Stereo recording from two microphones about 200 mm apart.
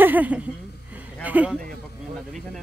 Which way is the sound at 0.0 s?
10° right (ahead or behind).